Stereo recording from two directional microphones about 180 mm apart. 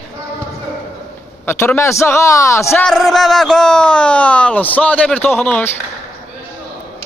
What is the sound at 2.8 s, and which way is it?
Speech, centre (ahead or behind).